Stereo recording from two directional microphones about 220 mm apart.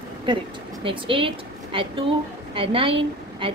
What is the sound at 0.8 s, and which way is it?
A woman's voice, 25° right (ahead or behind).